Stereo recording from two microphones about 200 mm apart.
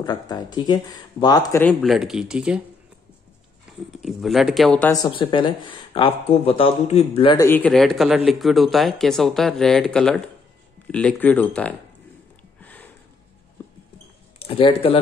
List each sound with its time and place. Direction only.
0.0 s speech: 20° left (ahead or behind)
1.6 s speech: 5° left (ahead or behind)
3.9 s speech: centre (ahead or behind)
4.9 s speech: 25° left (ahead or behind)
7.3 s speech: 10° left (ahead or behind)
12.6 s a sound: 10° left (ahead or behind)
14.4 s speech: 30° left (ahead or behind)